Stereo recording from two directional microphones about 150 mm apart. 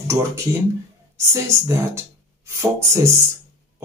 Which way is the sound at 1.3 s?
20° right (ahead or behind).